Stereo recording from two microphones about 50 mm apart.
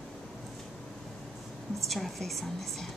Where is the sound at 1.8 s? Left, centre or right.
Centre.